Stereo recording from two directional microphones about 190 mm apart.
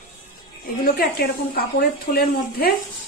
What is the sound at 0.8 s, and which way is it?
Speech, 50° left (ahead or behind).